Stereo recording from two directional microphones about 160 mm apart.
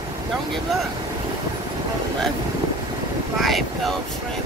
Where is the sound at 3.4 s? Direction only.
Centre (ahead or behind).